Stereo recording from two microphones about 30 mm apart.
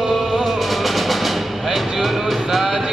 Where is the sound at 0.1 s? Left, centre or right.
Centre.